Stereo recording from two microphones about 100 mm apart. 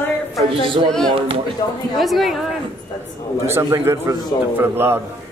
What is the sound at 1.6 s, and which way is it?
Speech, 45° left (ahead or behind).